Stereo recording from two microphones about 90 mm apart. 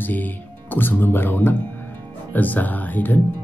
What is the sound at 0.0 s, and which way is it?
Speech, 20° left (ahead or behind).